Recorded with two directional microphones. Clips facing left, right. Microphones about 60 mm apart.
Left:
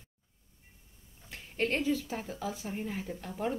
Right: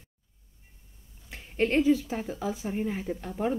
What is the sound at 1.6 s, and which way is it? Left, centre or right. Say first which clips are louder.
Speech: right 7 dB; centre.